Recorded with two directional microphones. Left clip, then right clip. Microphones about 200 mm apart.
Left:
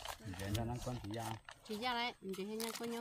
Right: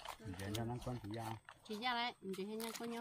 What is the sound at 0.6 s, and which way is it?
Speech, 40° left (ahead or behind).